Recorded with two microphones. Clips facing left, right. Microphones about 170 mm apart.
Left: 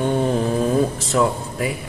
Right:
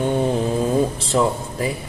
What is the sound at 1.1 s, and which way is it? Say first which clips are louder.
Speech: even; 25° right (ahead or behind).